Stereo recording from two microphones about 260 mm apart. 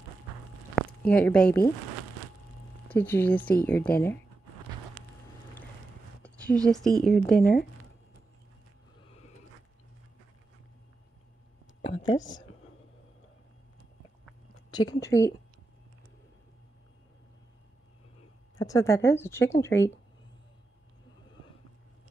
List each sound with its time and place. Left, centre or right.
0.7 s speech: centre
2.9 s speech: centre
6.2 s a sound: centre
7.0 s a woman's voice: centre
11.8 s a sound: centre
14.7 s speech: centre
18.6 s speech: centre